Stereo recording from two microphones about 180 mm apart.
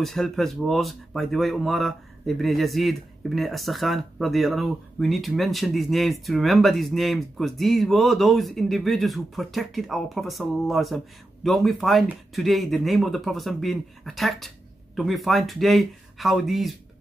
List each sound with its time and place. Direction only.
0.0 s speech: centre (ahead or behind)